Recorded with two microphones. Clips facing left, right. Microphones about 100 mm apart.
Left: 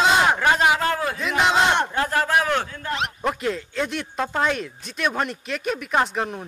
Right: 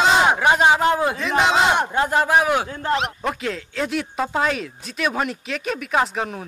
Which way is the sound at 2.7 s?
40° right (ahead or behind).